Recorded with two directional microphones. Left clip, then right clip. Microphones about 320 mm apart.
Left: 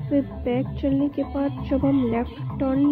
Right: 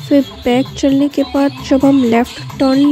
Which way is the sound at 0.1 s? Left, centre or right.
Right.